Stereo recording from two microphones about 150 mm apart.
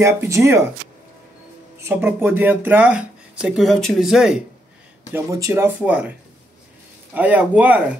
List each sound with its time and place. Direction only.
0.0 s speech: 20° right (ahead or behind)
1.8 s speech: 15° right (ahead or behind)
5.1 s speech: 20° right (ahead or behind)
7.2 s speech: 10° right (ahead or behind)